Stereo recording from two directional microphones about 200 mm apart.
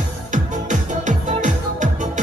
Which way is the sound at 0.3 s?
40° right (ahead or behind).